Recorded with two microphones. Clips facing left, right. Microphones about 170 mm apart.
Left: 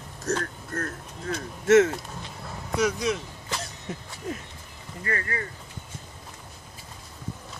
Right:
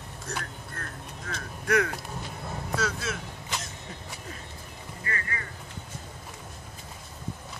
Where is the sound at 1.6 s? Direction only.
25° left (ahead or behind).